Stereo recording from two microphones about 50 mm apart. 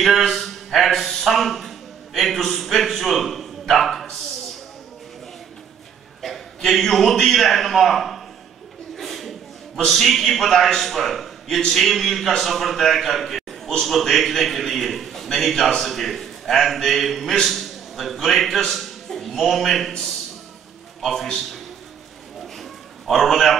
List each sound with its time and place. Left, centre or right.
0.3 s speech: centre
6.2 s a man's voice: centre
8.9 s a sound: centre
9.8 s a man's voice: centre
21.0 s a man's voice: centre
22.6 s a sound: centre